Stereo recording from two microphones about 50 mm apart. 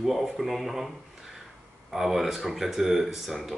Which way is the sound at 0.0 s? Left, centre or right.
Centre.